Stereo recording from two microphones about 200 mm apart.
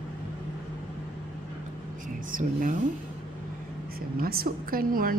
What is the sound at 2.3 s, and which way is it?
Speech, 40° right (ahead or behind).